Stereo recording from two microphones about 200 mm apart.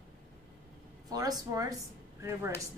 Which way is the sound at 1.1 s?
20° right (ahead or behind).